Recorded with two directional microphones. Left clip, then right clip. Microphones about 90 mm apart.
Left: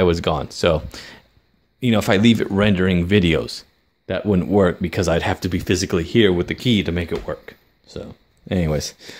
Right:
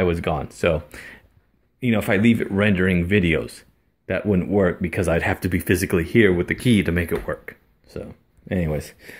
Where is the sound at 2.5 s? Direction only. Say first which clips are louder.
Left 2 dB; 35° left (ahead or behind).